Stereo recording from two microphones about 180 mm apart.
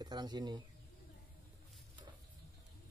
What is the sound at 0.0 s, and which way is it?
Speech, 25° right (ahead or behind).